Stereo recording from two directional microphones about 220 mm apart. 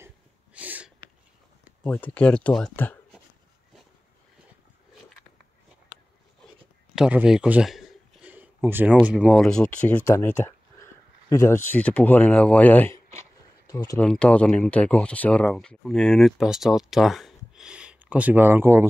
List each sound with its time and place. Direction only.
0.6 s sneeze: 5° right (ahead or behind)
1.8 s speech: 5° left (ahead or behind)
7.0 s a sound: 5° right (ahead or behind)
9.0 s speech: 5° right (ahead or behind); by 14.0 s 15° left (ahead or behind)
14.0 s speech: 5° left (ahead or behind)